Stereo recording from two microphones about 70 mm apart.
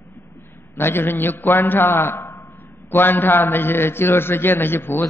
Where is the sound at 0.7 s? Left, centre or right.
Left.